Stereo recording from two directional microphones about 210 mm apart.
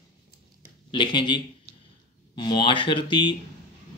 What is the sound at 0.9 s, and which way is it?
Speech, 20° left (ahead or behind).